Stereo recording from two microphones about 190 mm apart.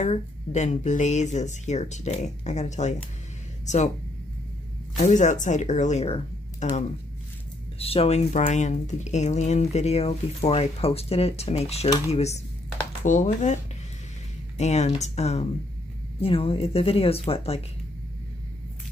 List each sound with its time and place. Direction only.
0.0 s speech: 40° left (ahead or behind)
4.9 s speech: 40° left (ahead or behind)
7.8 s speech: 30° left (ahead or behind)
14.6 s speech: 35° left (ahead or behind)